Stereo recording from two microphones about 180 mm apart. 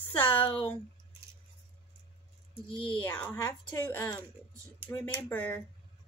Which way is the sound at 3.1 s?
10° left (ahead or behind).